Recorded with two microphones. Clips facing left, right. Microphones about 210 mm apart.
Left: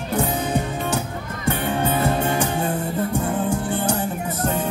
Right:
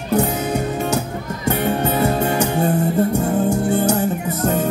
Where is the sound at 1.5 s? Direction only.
40° right (ahead or behind).